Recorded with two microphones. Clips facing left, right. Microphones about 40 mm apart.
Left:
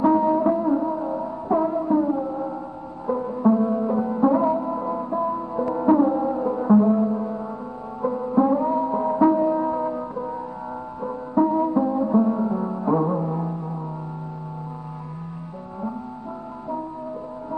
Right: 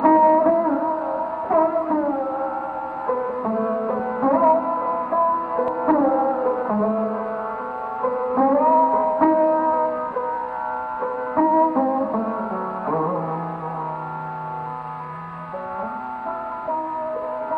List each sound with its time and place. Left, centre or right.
0.0 s music: right